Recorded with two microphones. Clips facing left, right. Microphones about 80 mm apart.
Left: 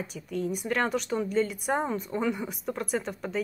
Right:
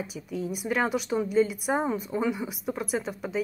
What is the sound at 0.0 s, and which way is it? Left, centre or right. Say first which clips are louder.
Speech: left 1 dB; centre.